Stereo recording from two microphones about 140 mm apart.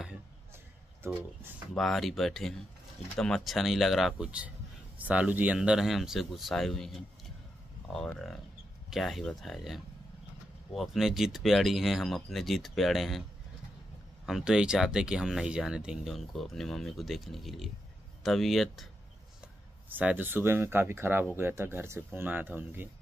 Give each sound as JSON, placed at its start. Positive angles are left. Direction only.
{"t": 1.7, "sound": "speech", "side_deg": 0}
{"t": 14.2, "sound": "speech", "side_deg": -5}
{"t": 19.9, "sound": "speech", "side_deg": -10}